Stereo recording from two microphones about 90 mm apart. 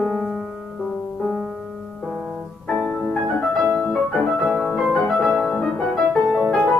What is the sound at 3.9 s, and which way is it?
Music, 5° left (ahead or behind).